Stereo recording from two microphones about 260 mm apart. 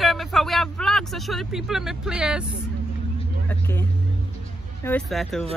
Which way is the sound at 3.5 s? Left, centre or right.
Centre.